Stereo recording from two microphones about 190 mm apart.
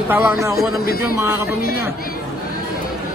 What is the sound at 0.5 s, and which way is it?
Speech, 50° left (ahead or behind).